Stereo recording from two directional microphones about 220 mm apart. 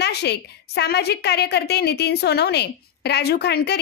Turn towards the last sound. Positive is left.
turn(degrees=50)  # may be behind; listen again after turning